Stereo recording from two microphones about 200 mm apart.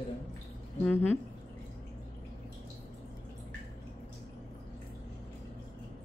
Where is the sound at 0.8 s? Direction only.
5° left (ahead or behind).